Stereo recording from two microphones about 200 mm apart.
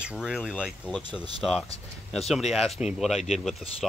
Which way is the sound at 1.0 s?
20° right (ahead or behind).